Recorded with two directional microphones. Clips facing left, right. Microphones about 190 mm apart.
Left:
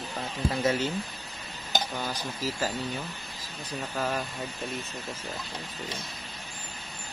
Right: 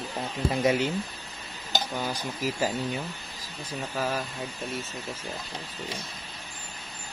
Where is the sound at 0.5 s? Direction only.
15° right (ahead or behind).